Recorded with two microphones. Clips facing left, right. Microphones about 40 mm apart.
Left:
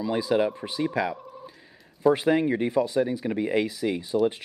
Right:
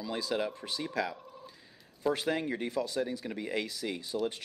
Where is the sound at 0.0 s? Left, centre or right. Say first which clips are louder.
Left 9 dB; centre.